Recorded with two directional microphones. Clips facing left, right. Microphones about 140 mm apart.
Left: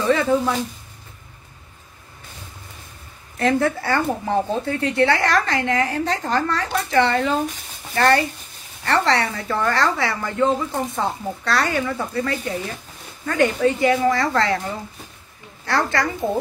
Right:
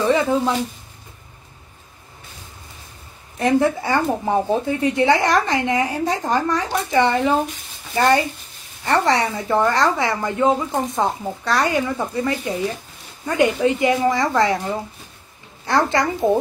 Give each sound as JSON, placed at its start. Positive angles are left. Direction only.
{"t": 0.0, "sound": "a sound", "side_deg": -20}
{"t": 3.3, "sound": "speech", "side_deg": -20}
{"t": 15.6, "sound": "speech", "side_deg": -20}